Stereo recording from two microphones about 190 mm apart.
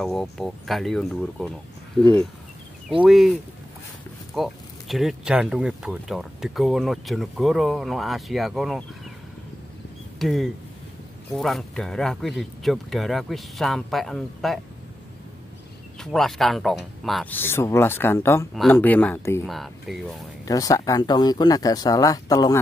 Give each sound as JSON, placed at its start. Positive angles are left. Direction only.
{"t": 0.0, "sound": "speech", "side_deg": 0}
{"t": 3.0, "sound": "speech", "side_deg": 0}
{"t": 4.4, "sound": "speech", "side_deg": 0}
{"t": 10.1, "sound": "speech", "side_deg": 0}
{"t": 16.0, "sound": "speech", "side_deg": 0}
{"t": 19.4, "sound": "speech", "side_deg": 0}
{"t": 20.4, "sound": "speech", "side_deg": 20}